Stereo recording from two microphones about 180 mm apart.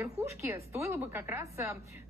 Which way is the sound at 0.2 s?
15° right (ahead or behind).